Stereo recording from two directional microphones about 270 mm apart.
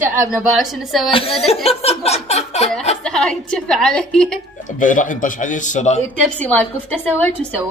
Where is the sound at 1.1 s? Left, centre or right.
Left.